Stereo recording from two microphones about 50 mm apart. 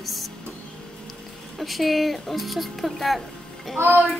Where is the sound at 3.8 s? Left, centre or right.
Right.